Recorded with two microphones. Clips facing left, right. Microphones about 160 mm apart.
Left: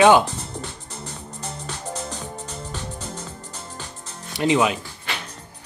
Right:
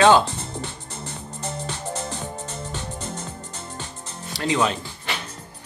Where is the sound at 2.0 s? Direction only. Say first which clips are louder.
Right 1 dB; 25° right (ahead or behind).